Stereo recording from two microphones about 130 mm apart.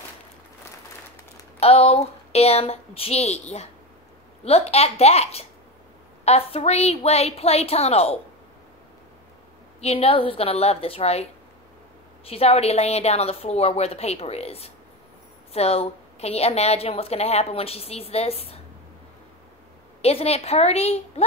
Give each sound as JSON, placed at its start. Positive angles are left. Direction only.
{"t": 1.6, "sound": "a woman's voice", "side_deg": 50}
{"t": 9.8, "sound": "a woman's voice", "side_deg": 50}
{"t": 12.3, "sound": "a woman's voice", "side_deg": 50}
{"t": 20.0, "sound": "a woman's voice", "side_deg": 50}